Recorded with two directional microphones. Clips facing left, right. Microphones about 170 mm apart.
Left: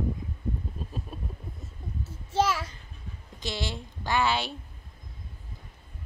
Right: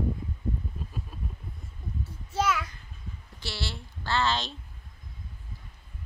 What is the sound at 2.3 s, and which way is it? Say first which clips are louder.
Speech: left 2 dB; 30° left (ahead or behind).